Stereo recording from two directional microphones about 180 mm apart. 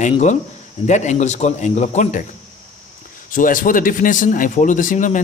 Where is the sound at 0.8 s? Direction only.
40° left (ahead or behind).